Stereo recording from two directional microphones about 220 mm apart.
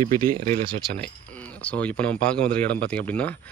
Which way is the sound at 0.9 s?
5° left (ahead or behind).